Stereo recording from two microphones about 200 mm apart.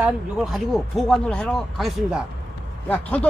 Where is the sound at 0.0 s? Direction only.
Centre (ahead or behind).